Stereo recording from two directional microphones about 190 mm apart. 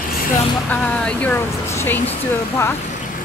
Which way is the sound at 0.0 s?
50° left (ahead or behind).